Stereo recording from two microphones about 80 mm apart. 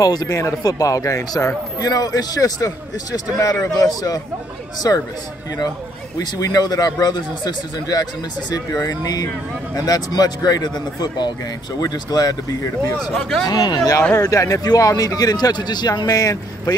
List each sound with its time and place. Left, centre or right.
0.0 s speech: left
6.1 s speech: left
11.8 s speech: left
12.9 s speech: centre
13.5 s speech: left